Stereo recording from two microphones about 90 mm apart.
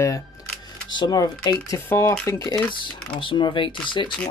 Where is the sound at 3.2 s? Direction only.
70° left (ahead or behind).